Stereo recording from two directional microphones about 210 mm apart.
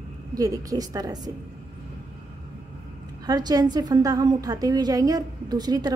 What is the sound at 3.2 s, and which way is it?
A woman's voice, 20° right (ahead or behind).